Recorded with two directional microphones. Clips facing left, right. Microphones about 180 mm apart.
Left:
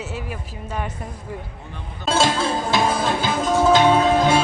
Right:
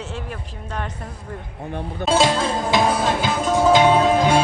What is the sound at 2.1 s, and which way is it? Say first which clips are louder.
Speech: right 1 dB; 15° right (ahead or behind).